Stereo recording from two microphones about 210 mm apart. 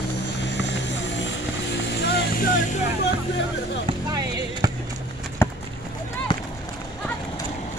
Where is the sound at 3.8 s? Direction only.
20° right (ahead or behind).